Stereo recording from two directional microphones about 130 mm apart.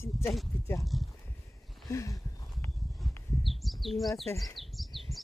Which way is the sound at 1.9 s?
25° left (ahead or behind).